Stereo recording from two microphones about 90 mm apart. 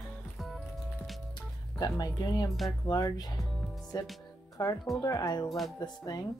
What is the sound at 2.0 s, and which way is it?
Speech, 50° left (ahead or behind).